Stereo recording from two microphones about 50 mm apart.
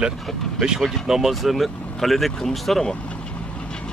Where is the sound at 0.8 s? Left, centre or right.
Centre.